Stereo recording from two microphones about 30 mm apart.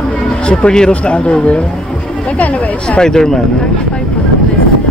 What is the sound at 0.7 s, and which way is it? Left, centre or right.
Speech, left.